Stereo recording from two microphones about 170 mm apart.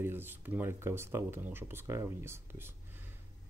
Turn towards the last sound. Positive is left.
turn(degrees=-15)  # may be behind; listen again after turning